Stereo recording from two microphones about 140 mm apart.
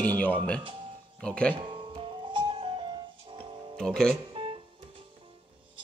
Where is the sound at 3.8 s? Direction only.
5° left (ahead or behind).